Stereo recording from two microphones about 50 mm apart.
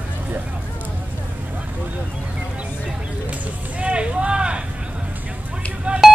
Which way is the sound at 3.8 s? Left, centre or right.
Right.